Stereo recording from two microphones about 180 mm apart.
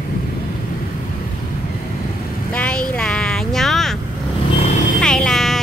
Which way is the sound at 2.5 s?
5° left (ahead or behind).